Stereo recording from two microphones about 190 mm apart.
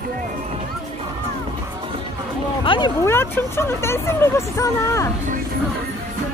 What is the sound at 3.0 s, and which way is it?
Speech, 10° left (ahead or behind).